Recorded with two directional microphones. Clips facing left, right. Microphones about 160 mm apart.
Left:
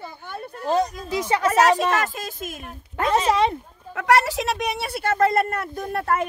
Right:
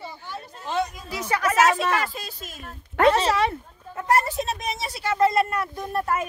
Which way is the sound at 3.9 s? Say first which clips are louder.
Left 3 dB; 80° left.